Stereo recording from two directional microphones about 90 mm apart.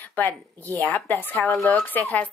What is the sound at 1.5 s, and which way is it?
Speech, centre (ahead or behind).